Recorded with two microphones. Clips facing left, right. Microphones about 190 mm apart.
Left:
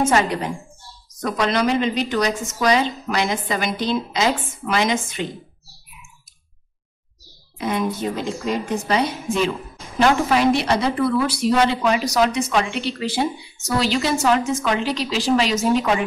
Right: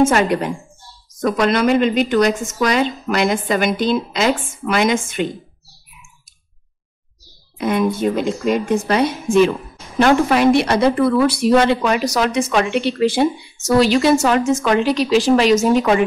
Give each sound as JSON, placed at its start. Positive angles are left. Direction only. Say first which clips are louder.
{"t": 0.1, "sound": "a woman's voice", "louder": "right 3 dB", "side_deg": -55}
{"t": 7.5, "sound": "a woman's voice", "louder": "right 5 dB", "side_deg": -55}